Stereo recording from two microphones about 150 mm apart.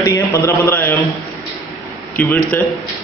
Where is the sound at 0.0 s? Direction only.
20° left (ahead or behind).